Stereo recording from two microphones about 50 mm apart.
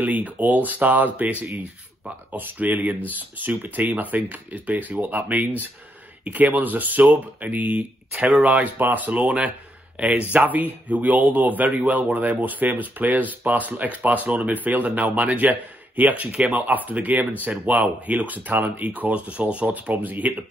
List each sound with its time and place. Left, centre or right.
0.0 s speech: right